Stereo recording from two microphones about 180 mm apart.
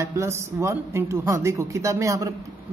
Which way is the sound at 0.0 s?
15° right (ahead or behind).